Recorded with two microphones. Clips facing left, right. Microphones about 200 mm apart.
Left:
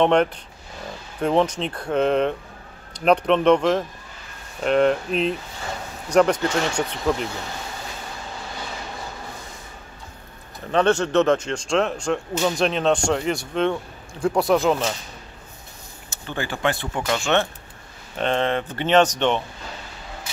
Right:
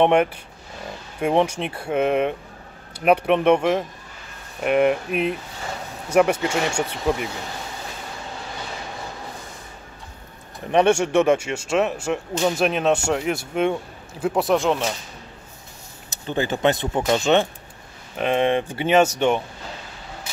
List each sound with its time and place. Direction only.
0.0 s speech: 10° right (ahead or behind)
10.7 s speech: 15° right (ahead or behind)
16.1 s speech: 20° right (ahead or behind)